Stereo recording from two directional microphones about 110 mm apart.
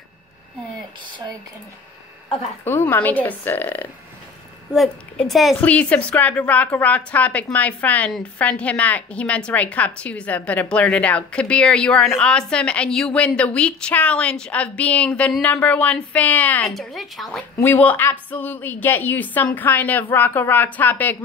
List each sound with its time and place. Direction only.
2.6 s a woman's voice: 20° left (ahead or behind)
4.7 s a woman's voice: 5° left (ahead or behind)
5.6 s a woman's voice: 10° left (ahead or behind)
16.6 s a woman's voice: centre (ahead or behind)
17.6 s a woman's voice: 15° left (ahead or behind)